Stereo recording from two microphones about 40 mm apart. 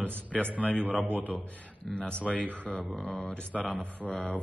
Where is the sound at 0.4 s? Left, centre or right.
Left.